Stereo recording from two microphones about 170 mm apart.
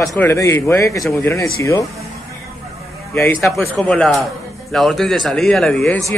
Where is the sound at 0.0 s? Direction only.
15° left (ahead or behind).